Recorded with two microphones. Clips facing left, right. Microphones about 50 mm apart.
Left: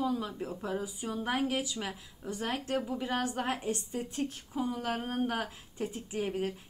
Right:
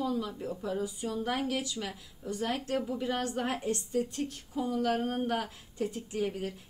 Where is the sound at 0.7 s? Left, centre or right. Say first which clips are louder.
Right 2 dB; centre.